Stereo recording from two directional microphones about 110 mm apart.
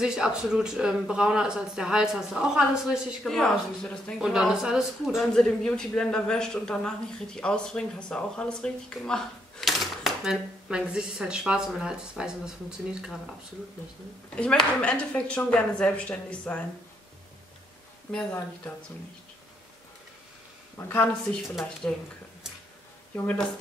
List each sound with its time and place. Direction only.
0.0 s a man's voice: 5° right (ahead or behind)
3.3 s speech: 5° left (ahead or behind)
4.2 s a man's voice: 5° right (ahead or behind)
14.3 s speech: 10° left (ahead or behind)
18.1 s speech: 10° left (ahead or behind)
20.7 s a woman's voice: 20° left (ahead or behind)
21.2 s a man's voice: 5° left (ahead or behind)
23.1 s speech: 15° left (ahead or behind)